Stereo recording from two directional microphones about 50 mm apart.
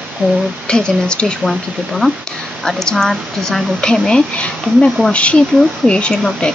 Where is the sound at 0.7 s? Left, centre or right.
Centre.